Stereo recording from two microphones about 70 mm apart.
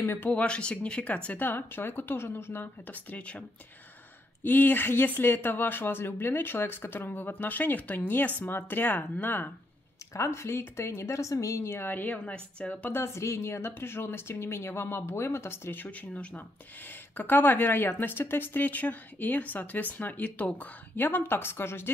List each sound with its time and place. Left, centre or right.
0.0 s speech: left
0.3 s speech: centre
10.1 s speech: left
11.8 s speech: left
12.9 s speech: left